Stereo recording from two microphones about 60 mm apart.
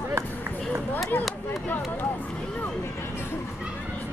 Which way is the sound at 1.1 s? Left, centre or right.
Left.